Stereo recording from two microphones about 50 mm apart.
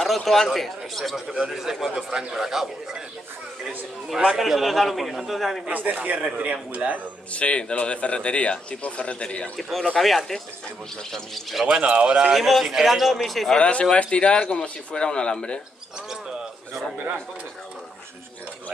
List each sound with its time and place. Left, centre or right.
0.0 s a man's voice: centre
4.4 s a man's voice: centre
5.7 s a man's voice: right
7.3 s speech: left
9.6 s a man's voice: centre
11.6 s a man's voice: centre
12.3 s a man's voice: centre
13.6 s speech: left
16.1 s bird: centre